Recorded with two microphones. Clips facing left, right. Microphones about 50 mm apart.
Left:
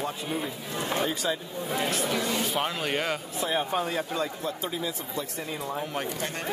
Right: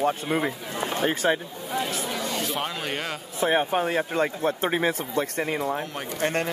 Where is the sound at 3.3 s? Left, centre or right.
Right.